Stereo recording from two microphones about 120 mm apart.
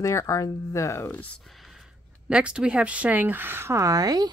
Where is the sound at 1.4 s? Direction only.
Centre (ahead or behind).